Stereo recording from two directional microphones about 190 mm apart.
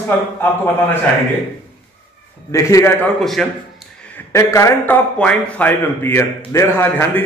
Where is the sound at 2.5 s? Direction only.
15° left (ahead or behind).